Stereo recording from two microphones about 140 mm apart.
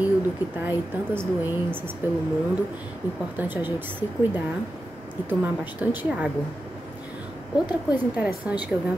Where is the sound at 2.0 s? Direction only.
15° right (ahead or behind).